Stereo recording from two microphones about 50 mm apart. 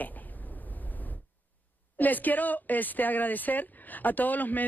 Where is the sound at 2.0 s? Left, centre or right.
Left.